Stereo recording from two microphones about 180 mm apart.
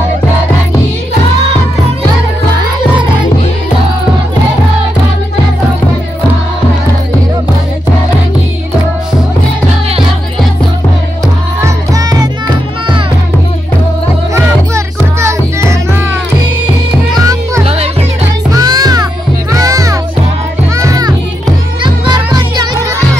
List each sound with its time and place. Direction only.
11.6 s music: 20° right (ahead or behind)
14.3 s music: 15° right (ahead or behind)
17.1 s music: 20° right (ahead or behind)
18.5 s music: 20° right (ahead or behind)